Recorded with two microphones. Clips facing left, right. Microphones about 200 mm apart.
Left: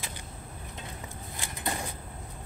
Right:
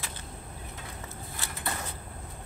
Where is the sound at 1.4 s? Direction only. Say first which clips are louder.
Left 2 dB; 15° left (ahead or behind).